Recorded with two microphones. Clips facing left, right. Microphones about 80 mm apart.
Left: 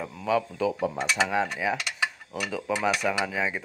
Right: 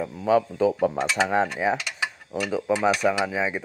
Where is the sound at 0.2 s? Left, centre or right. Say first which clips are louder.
Right 5 dB; right.